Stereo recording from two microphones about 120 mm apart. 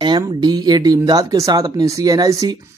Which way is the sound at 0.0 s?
40° right (ahead or behind).